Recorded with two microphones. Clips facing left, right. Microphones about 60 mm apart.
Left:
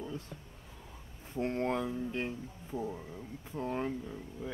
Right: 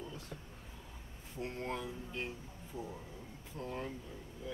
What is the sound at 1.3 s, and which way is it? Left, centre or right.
Speech, left.